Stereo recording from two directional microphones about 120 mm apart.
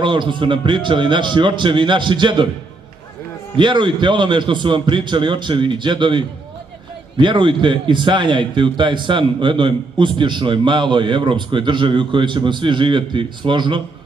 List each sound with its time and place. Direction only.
0.0 s a man's voice: 40° right (ahead or behind)
3.5 s a man's voice: 40° right (ahead or behind)